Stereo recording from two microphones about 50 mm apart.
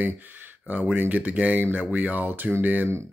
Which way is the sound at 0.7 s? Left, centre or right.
Right.